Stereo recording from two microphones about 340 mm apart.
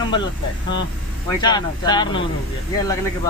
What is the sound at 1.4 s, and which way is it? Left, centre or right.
Speech, centre.